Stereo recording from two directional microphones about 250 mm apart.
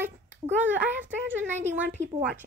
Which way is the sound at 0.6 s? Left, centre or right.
Centre.